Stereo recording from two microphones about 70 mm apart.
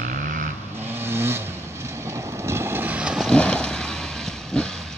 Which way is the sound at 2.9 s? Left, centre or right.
Centre.